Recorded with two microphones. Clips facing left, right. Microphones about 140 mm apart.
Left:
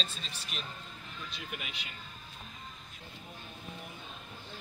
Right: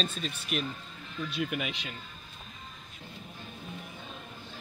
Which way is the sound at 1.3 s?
90° right.